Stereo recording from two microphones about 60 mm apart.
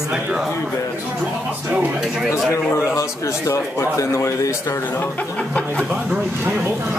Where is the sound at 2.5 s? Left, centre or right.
Left.